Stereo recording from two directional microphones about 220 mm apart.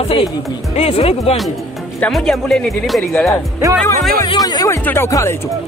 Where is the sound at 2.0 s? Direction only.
5° left (ahead or behind).